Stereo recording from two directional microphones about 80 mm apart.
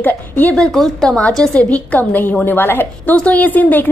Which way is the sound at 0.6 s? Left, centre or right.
Centre.